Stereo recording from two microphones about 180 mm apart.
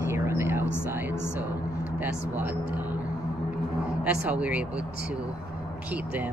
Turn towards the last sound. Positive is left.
turn(degrees=-5)  # may be behind; listen again after turning